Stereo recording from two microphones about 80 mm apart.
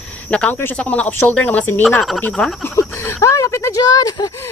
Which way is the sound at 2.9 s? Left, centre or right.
Left.